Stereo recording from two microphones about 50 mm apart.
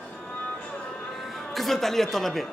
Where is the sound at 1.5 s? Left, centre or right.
Centre.